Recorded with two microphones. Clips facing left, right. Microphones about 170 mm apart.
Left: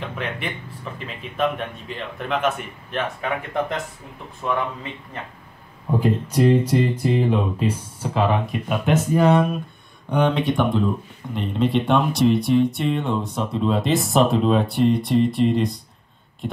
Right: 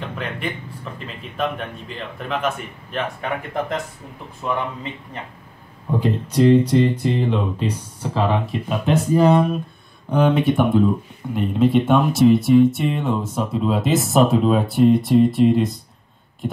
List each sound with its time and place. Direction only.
0.0 s speech: centre (ahead or behind)
6.2 s speech: 25° right (ahead or behind)
6.7 s guitar: 10° left (ahead or behind)
7.6 s speech: 5° left (ahead or behind)